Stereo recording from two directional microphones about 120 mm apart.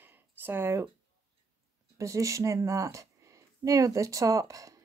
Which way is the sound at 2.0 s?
25° right (ahead or behind).